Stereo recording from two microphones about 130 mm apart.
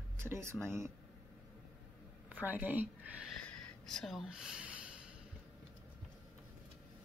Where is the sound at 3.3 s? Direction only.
5° left (ahead or behind).